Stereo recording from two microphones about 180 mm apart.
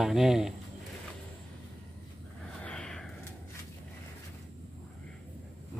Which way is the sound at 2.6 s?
5° left (ahead or behind).